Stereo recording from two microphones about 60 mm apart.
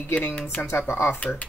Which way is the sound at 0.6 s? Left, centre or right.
Left.